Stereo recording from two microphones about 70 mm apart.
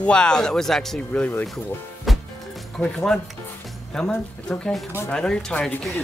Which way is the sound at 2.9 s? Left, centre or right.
Centre.